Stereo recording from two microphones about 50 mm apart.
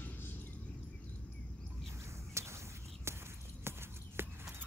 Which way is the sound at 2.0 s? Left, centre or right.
Right.